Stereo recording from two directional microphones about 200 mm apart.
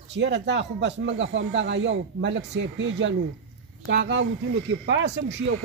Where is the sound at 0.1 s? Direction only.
60° right (ahead or behind).